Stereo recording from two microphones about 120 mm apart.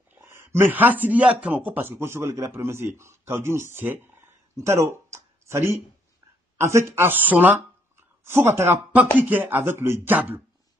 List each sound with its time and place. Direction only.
0.1 s speech: 20° right (ahead or behind)
4.6 s a sound: 25° right (ahead or behind)
6.6 s speech: 25° right (ahead or behind)